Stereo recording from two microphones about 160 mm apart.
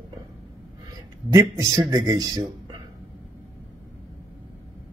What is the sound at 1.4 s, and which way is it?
Speech, 20° right (ahead or behind).